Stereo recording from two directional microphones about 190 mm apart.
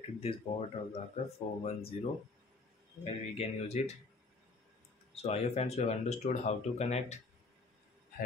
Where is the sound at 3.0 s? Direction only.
35° left (ahead or behind).